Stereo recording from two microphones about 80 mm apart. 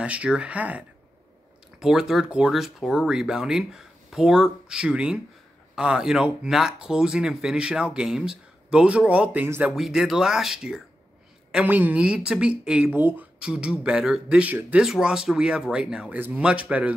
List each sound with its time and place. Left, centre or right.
0.0 s speech: centre
1.8 s speech: centre
2.5 s speech: centre; by 9.7 s right
9.7 s speech: centre
11.6 s speech: right
12.9 s speech: right
13.4 s speech: centre
14.9 s speech: centre